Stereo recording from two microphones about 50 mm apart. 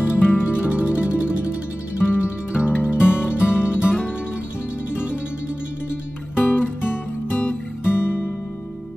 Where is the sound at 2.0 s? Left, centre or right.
Left.